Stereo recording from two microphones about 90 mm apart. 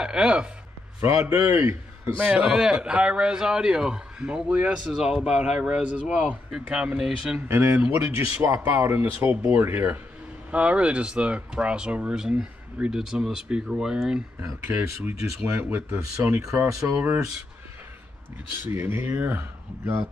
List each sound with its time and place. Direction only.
0.0 s speech: 10° right (ahead or behind)
1.0 s a man's voice: 35° right (ahead or behind)
2.1 s speech: 15° right (ahead or behind)
7.3 s speech: 30° right (ahead or behind); by 14.2 s 5° right (ahead or behind)
14.4 s a man's voice: 30° right (ahead or behind)
18.6 s speech: 25° right (ahead or behind)